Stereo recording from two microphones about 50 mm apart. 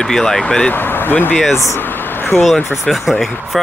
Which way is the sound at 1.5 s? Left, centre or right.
Left.